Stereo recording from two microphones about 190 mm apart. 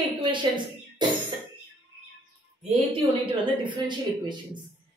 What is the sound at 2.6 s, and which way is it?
A woman's voice, 30° right (ahead or behind).